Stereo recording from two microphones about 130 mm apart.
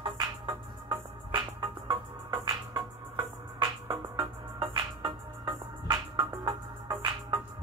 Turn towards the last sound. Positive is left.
turn(degrees=-30)  # may be behind; listen again after turning